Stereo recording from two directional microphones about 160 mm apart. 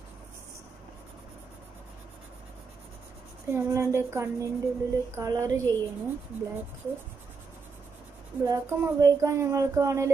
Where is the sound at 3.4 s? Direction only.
15° right (ahead or behind).